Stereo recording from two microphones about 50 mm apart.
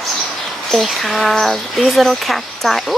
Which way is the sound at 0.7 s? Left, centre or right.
Centre.